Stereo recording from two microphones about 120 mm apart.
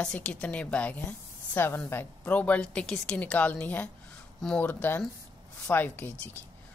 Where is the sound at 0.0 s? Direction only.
10° left (ahead or behind).